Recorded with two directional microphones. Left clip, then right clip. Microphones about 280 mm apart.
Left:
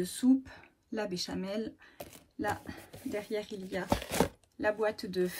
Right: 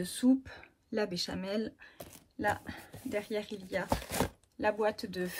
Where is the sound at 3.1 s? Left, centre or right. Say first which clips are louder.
Even; right.